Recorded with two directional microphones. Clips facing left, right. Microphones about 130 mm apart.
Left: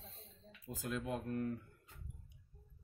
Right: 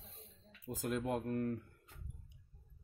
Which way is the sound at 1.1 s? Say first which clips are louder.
Right 1 dB; 65° right (ahead or behind).